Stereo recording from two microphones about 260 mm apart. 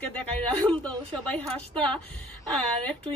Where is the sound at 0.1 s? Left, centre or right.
Centre.